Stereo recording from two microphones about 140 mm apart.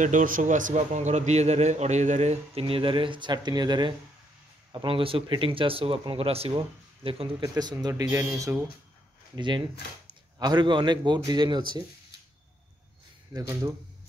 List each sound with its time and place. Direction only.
0.0 s a man's voice: 70° right (ahead or behind); by 7.4 s 40° right (ahead or behind)
7.4 s speech: 30° right (ahead or behind)
9.3 s speech: 35° right (ahead or behind)
13.3 s speech: 25° right (ahead or behind)